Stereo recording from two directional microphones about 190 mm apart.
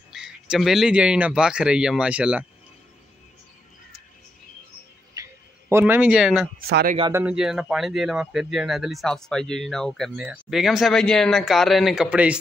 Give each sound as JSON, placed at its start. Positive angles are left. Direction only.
{"t": 0.1, "sound": "speech", "side_deg": 0}
{"t": 5.1, "sound": "a sound", "side_deg": -15}
{"t": 6.7, "sound": "speech", "side_deg": -55}
{"t": 7.1, "sound": "speech", "side_deg": -10}